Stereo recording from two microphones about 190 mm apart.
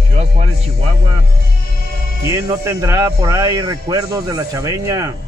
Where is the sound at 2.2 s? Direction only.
15° right (ahead or behind).